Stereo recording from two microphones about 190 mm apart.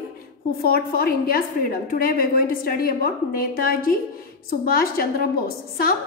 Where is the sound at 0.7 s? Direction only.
50° left (ahead or behind).